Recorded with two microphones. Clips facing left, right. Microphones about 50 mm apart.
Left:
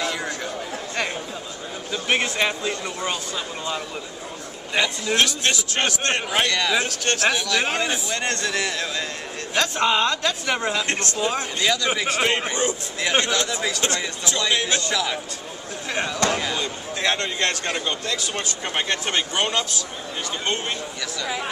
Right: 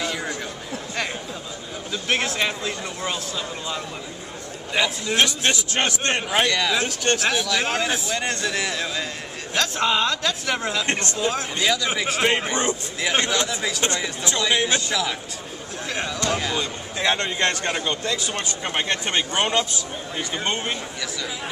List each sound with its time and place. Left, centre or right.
0.0 s chatter: centre
1.9 s speech: centre
4.7 s speech: centre
6.9 s speech: centre
7.2 s speech: centre
17.2 s speech: centre